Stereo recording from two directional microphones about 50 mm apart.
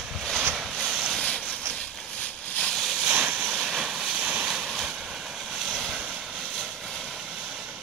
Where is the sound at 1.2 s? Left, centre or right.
Left.